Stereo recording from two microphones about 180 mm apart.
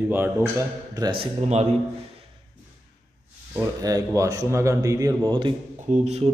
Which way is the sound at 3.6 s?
20° right (ahead or behind).